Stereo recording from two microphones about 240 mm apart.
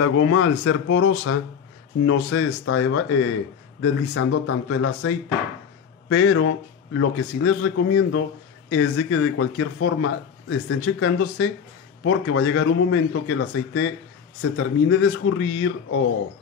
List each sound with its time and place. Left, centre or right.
0.0 s speech: left